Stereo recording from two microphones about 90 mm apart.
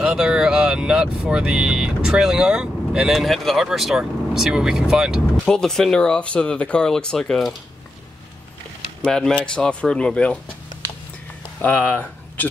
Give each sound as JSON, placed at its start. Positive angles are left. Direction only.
{"t": 0.0, "sound": "speech", "side_deg": -10}
{"t": 5.4, "sound": "speech", "side_deg": 5}
{"t": 9.0, "sound": "speech", "side_deg": 5}
{"t": 11.6, "sound": "speech", "side_deg": 15}